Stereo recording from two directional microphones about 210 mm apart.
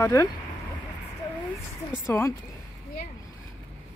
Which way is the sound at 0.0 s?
15° left (ahead or behind).